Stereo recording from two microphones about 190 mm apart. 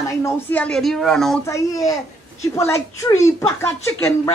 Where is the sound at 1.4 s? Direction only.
15° left (ahead or behind).